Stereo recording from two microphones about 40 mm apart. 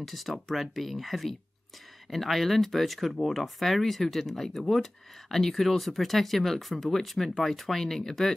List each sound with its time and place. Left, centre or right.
0.0 s speech: centre